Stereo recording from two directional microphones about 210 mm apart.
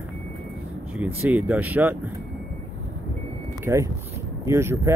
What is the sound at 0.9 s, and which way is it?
Speech, 5° right (ahead or behind).